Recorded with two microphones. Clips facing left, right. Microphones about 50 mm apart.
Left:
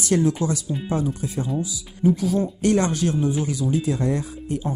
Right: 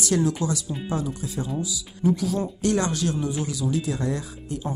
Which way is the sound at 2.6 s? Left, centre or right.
Left.